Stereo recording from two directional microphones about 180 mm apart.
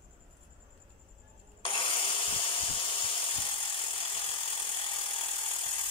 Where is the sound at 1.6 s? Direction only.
30° left (ahead or behind).